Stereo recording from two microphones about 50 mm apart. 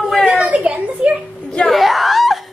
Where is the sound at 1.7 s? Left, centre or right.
Centre.